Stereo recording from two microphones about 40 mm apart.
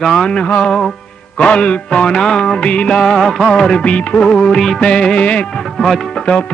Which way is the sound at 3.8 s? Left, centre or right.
Left.